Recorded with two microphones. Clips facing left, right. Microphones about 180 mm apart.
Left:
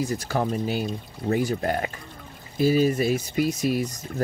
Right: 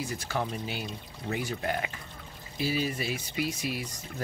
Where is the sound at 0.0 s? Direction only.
40° left (ahead or behind).